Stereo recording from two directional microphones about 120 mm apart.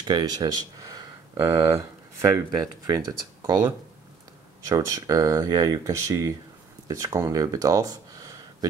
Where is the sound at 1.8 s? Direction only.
25° right (ahead or behind).